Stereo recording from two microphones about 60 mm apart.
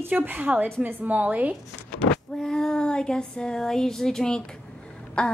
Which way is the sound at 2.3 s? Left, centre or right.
Centre.